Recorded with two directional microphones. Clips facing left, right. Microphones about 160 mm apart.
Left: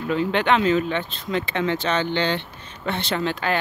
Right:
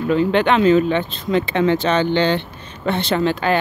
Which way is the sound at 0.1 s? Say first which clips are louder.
Right 4 dB; 40° right (ahead or behind).